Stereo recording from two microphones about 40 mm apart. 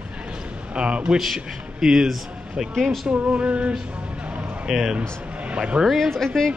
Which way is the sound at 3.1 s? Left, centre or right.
Right.